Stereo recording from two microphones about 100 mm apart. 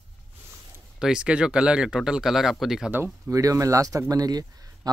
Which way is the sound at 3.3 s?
30° right (ahead or behind).